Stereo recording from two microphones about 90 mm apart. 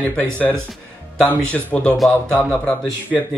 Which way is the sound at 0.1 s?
15° left (ahead or behind).